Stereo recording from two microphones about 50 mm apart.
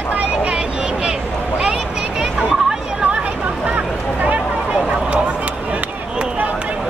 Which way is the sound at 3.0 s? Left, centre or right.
Right.